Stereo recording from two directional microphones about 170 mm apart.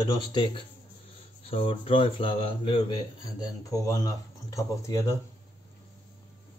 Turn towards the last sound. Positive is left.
turn(degrees=20)  # may be behind; listen again after turning